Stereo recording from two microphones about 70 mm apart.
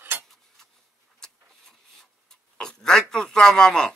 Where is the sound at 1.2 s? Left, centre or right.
Centre.